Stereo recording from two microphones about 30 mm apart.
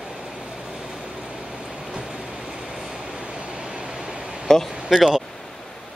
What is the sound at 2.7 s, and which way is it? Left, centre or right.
Vehicle, centre.